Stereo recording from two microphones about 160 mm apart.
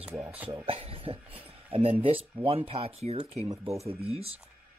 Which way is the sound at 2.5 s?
40° right (ahead or behind).